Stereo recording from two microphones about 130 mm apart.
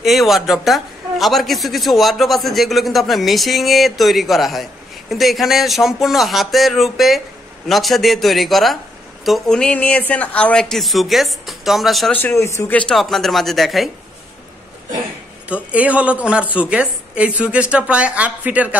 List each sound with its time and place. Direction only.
0.0 s a man's voice: centre (ahead or behind)
12.1 s a man's voice: 15° left (ahead or behind)
12.7 s a man's voice: 5° left (ahead or behind)
15.4 s a woman's voice: 10° right (ahead or behind)